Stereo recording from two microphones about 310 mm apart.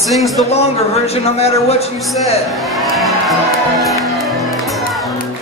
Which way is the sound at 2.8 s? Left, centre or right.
Centre.